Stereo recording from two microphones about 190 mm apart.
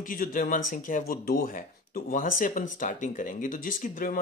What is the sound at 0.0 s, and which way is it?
Speech, 45° left (ahead or behind).